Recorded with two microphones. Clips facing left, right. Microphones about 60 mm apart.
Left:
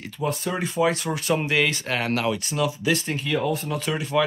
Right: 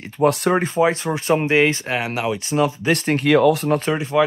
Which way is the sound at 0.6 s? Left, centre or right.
Right.